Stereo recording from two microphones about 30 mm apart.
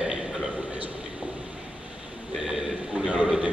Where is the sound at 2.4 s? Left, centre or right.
Centre.